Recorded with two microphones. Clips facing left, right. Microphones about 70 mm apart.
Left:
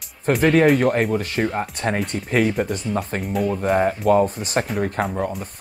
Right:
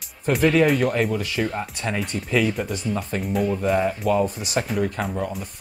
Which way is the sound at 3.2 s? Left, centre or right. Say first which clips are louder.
Even; centre.